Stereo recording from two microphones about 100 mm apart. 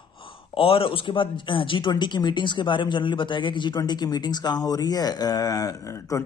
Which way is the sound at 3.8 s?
40° left (ahead or behind).